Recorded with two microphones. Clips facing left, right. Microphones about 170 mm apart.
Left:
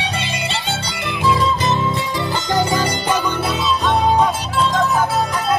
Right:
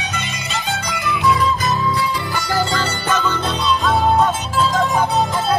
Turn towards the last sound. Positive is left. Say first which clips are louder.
# even
turn(degrees=0)  # may be behind; listen again after turning